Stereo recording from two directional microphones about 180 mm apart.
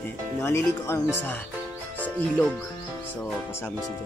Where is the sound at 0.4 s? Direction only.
15° left (ahead or behind).